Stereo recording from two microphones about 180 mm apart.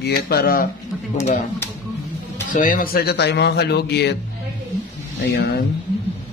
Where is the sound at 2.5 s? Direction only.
50° left (ahead or behind); by 4.1 s 65° left (ahead or behind).